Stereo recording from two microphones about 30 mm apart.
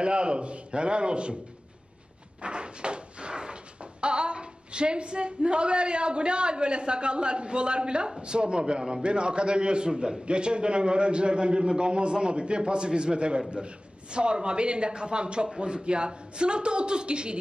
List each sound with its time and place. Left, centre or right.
0.0 s speech: right
2.4 s speech: right